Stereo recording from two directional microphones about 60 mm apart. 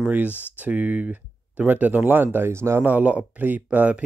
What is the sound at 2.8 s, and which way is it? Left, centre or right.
Speech, right.